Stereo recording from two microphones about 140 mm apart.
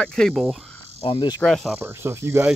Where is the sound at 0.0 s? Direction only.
5° left (ahead or behind).